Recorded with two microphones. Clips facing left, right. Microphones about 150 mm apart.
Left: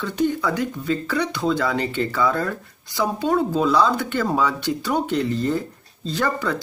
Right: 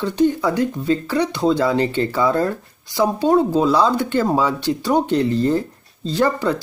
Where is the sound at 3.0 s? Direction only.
30° right (ahead or behind).